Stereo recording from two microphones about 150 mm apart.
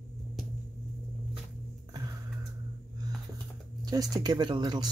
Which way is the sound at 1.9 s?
25° right (ahead or behind).